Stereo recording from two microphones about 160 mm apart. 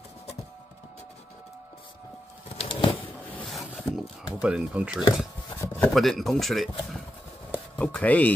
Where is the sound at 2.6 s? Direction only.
30° left (ahead or behind).